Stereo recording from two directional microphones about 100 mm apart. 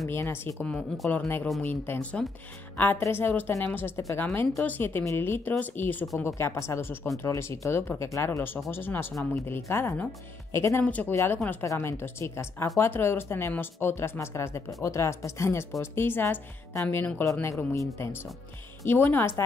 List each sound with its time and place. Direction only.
0.0 s speech: 25° left (ahead or behind)
10.8 s speech: 15° left (ahead or behind)
11.6 s speech: 30° left (ahead or behind)
17.2 s speech: 30° left (ahead or behind)